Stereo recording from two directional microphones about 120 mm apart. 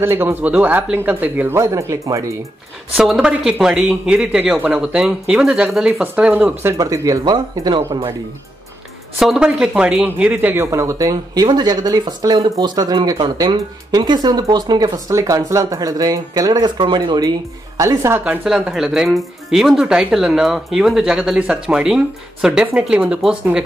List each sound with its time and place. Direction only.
0.0 s speech: 20° right (ahead or behind)
3.0 s speech: 5° right (ahead or behind)
6.8 s speech: 30° right (ahead or behind)
9.2 s speech: 5° right (ahead or behind); by 17.3 s 40° right (ahead or behind)
17.7 s speech: 25° right (ahead or behind)